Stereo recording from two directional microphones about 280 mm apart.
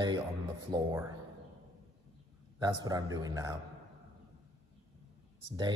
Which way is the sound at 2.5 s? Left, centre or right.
Centre.